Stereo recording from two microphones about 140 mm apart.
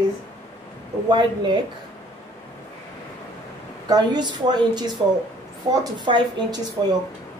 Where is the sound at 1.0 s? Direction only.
35° right (ahead or behind).